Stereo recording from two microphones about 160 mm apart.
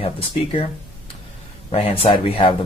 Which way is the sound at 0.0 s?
35° left (ahead or behind).